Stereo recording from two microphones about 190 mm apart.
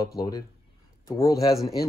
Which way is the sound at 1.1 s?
15° left (ahead or behind).